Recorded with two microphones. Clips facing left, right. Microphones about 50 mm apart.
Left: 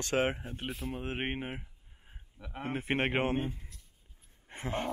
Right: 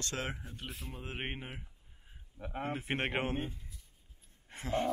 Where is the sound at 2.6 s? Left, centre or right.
Left.